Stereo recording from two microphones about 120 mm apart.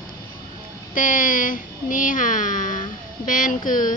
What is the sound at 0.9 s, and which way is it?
A woman's voice, 90° left.